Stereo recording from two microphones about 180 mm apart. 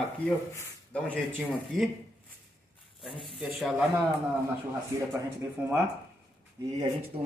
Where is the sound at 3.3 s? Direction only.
Centre (ahead or behind).